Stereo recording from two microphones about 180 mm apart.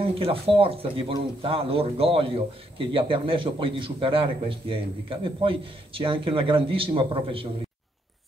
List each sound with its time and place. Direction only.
0.1 s speech: 30° right (ahead or behind)